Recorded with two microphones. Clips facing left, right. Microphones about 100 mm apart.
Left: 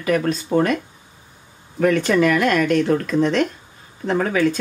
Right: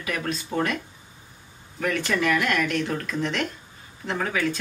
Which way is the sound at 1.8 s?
35° left (ahead or behind).